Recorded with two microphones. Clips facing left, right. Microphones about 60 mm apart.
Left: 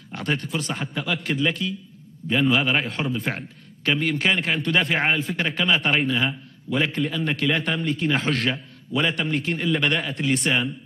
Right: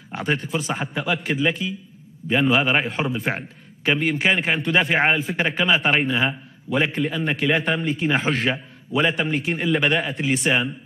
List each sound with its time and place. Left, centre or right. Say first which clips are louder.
0.1 s a man's voice: right 2 dB; centre